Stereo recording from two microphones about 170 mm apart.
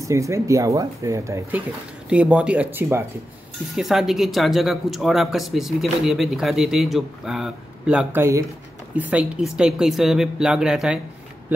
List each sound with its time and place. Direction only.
0.1 s speech: 20° right (ahead or behind)